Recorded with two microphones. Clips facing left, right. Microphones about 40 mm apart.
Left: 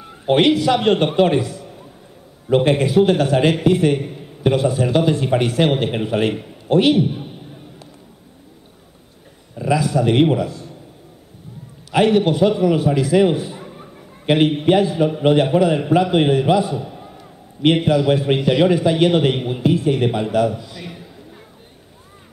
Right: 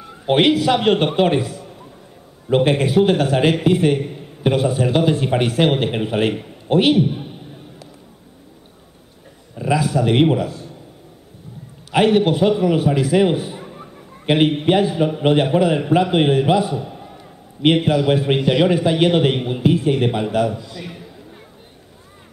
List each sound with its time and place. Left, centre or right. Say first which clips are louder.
0.3 s a man's voice: even; centre
9.8 s a man's voice: even; centre
11.9 s a man's voice: even; centre
13.5 s a sound: right 1 dB; centre
15.0 s a man's voice: left 1 dB; centre
20.6 s a man's voice: right 1 dB; centre